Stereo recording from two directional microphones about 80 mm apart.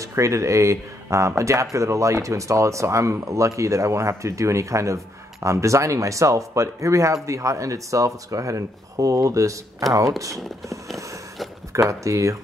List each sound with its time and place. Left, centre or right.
0.0 s speech: right